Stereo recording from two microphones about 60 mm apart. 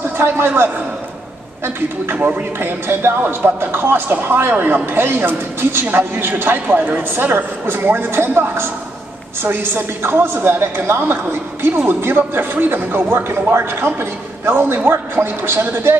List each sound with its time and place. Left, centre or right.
0.2 s speech: right
2.0 s speech: right
2.6 s speech: right